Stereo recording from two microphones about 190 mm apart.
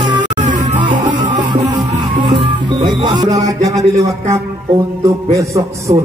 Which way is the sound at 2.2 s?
25° right (ahead or behind).